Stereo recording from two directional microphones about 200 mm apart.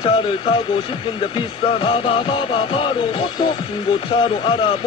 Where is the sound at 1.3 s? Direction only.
25° left (ahead or behind).